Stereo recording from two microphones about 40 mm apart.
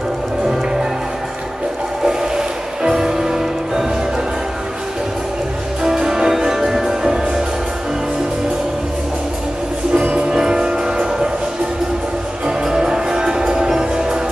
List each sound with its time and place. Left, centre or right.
2.0 s music: centre
5.9 s music: centre
10.1 s music: centre
12.4 s music: centre